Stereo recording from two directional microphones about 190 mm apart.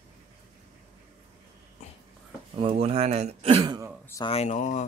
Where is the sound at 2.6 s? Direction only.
30° right (ahead or behind).